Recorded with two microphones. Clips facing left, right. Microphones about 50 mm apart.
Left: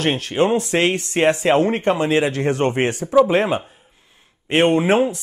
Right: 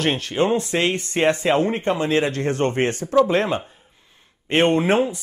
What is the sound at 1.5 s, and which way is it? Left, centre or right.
Speech, left.